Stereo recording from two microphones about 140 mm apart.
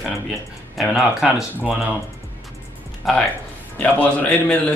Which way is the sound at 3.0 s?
Centre (ahead or behind).